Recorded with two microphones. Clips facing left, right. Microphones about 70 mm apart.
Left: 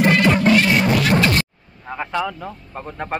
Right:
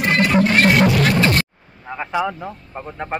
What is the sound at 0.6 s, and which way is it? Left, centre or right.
Music, right.